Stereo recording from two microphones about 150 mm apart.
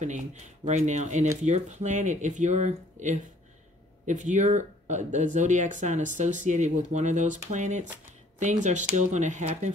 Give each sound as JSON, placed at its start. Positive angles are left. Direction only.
{"t": 0.0, "sound": "speech", "side_deg": -55}